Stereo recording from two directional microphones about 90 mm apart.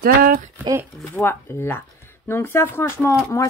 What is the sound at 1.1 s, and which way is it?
Speech, 25° left (ahead or behind).